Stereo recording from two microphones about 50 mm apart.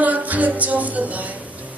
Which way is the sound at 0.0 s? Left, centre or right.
Right.